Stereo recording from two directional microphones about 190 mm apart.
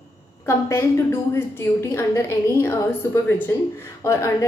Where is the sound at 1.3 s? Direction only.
15° left (ahead or behind).